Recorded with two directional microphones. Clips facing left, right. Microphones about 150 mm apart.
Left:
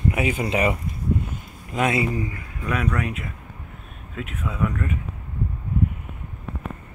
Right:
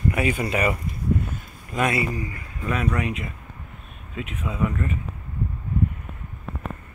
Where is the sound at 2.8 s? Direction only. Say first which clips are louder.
Right 2 dB; 10° right (ahead or behind).